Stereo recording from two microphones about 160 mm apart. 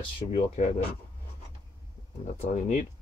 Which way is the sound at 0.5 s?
50° left (ahead or behind).